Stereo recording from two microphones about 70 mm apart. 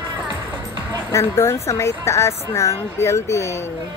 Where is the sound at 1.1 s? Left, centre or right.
Left.